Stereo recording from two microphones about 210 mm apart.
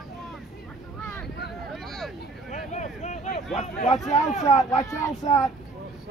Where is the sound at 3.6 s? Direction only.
35° left (ahead or behind).